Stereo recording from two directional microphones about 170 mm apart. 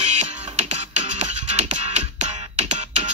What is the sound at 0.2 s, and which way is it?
Music, 40° right (ahead or behind).